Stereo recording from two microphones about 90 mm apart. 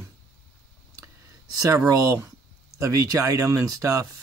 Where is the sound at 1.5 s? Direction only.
35° right (ahead or behind).